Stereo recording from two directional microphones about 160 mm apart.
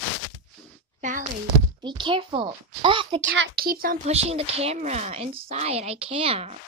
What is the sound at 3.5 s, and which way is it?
Speech, 70° right (ahead or behind).